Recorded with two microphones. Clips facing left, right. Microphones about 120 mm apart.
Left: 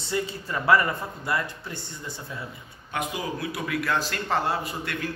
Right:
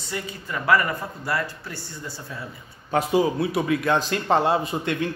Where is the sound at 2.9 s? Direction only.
30° right (ahead or behind).